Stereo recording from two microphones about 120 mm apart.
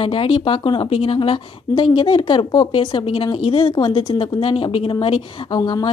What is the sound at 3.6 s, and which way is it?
A woman's voice, 35° left (ahead or behind).